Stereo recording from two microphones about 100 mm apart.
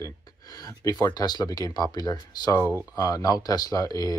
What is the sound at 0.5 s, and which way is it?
Speech, 40° left (ahead or behind).